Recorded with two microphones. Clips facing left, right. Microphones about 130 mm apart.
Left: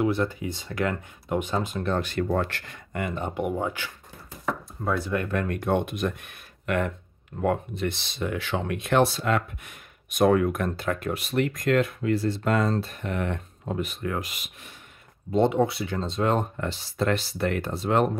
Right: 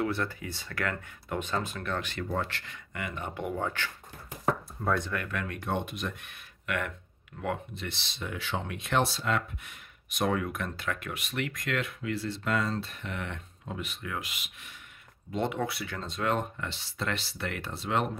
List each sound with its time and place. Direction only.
0.0 s speech: 15° left (ahead or behind)
1.8 s speech: 35° left (ahead or behind)
2.3 s speech: 50° left (ahead or behind)
3.3 s speech: 15° left (ahead or behind)
5.1 s speech: 25° left (ahead or behind)
5.4 s speech: 50° left (ahead or behind)
15.3 s speech: 30° left (ahead or behind)
16.5 s speech: 40° left (ahead or behind)